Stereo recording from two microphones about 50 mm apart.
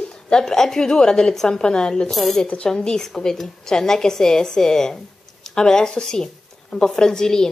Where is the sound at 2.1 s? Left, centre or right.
Centre.